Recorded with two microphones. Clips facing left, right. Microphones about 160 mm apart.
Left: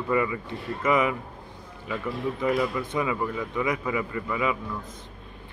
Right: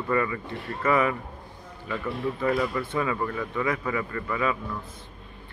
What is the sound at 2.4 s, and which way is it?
Speech, 20° left (ahead or behind).